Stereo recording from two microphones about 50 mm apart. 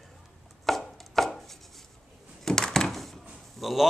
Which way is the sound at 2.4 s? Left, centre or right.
Centre.